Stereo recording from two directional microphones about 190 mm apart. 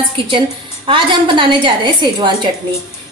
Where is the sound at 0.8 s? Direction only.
25° right (ahead or behind).